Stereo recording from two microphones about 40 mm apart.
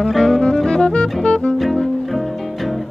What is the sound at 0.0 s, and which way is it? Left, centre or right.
Saxophone, centre.